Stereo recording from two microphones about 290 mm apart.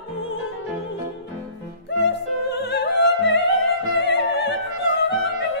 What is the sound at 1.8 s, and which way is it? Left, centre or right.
Opera, left.